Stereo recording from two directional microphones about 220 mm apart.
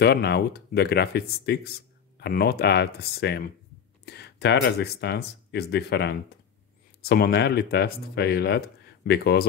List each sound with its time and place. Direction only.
0.0 s speech: 50° left (ahead or behind)